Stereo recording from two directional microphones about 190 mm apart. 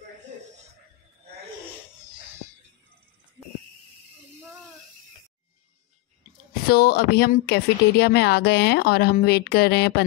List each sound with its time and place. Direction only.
6.7 s speech: 55° left (ahead or behind)